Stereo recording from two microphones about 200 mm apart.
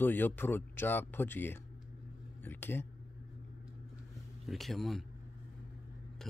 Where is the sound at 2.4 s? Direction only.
10° left (ahead or behind).